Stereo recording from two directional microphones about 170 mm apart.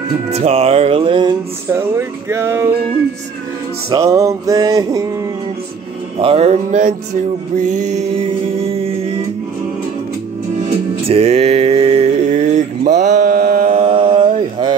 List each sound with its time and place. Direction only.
0.3 s music: 40° right (ahead or behind)
1.7 s speech: 15° right (ahead or behind)
3.9 s music: 20° right (ahead or behind)
6.1 s music: 35° right (ahead or behind)
8.7 s music: 35° right (ahead or behind)
10.7 s music: 35° right (ahead or behind)
13.1 s mantra: 55° right (ahead or behind); by 14.8 s 30° right (ahead or behind)